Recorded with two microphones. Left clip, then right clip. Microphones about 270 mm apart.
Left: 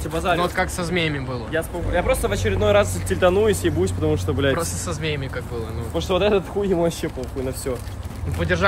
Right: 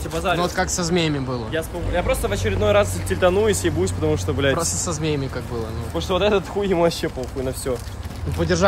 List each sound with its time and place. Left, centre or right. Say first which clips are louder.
0.1 s speech: left 1 dB; centre
0.4 s speech: even; centre
1.5 s speech: left 3 dB; centre
5.9 s speech: even; centre
7.0 s speech: right 2 dB; right
8.4 s speech: right 1 dB; centre